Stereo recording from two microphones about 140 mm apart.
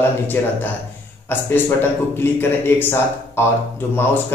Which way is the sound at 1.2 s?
15° left (ahead or behind).